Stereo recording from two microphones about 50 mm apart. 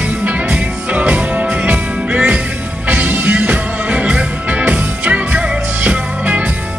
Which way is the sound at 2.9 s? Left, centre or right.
Right.